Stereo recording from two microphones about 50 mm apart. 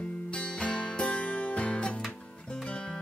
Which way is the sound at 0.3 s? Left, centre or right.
Centre.